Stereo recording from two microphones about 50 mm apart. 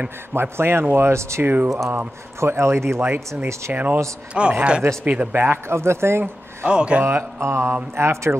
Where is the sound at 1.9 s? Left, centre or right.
Right.